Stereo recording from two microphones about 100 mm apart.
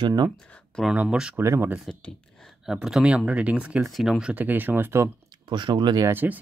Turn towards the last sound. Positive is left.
turn(degrees=-20)  # may be behind; listen again after turning